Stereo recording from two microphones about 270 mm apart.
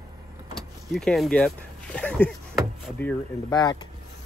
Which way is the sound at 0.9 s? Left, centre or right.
Centre.